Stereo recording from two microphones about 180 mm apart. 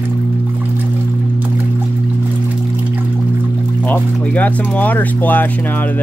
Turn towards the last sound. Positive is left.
turn(degrees=10)  # may be behind; listen again after turning